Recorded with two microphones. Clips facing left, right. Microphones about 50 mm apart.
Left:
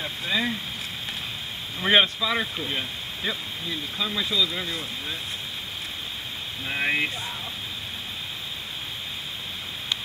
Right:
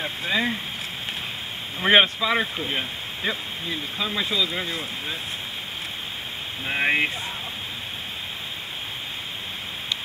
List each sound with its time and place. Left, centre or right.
0.0 s speech: centre
1.8 s speech: right
6.6 s speech: right